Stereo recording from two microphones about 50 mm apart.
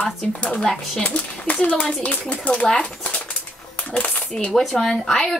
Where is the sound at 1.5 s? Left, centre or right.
Left.